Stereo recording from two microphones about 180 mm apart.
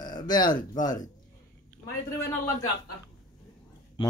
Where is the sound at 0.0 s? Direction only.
25° left (ahead or behind).